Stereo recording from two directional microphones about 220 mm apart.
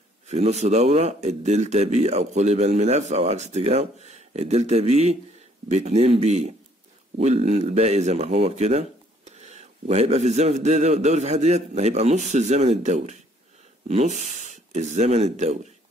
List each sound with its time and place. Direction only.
0.3 s speech: 30° right (ahead or behind)